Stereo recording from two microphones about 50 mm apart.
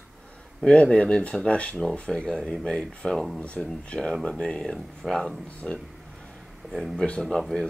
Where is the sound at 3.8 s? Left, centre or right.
Centre.